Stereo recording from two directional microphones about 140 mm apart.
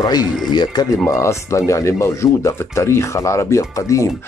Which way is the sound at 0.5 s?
30° left (ahead or behind).